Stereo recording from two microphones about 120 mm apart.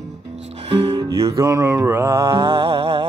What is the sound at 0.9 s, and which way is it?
Music, 30° right (ahead or behind).